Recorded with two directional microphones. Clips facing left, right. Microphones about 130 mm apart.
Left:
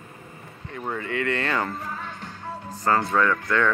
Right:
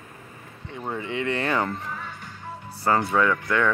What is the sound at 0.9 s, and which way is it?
Speech, 15° right (ahead or behind).